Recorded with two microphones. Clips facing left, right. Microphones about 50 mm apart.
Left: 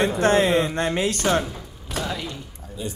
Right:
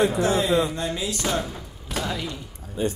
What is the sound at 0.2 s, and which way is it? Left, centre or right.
Speech, left.